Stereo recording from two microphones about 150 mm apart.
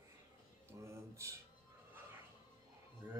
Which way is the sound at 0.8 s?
20° right (ahead or behind).